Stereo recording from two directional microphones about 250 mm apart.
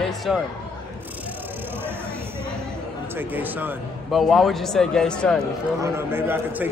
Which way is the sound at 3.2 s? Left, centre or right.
Centre.